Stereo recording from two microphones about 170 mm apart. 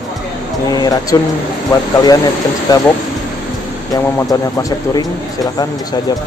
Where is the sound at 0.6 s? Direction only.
25° left (ahead or behind).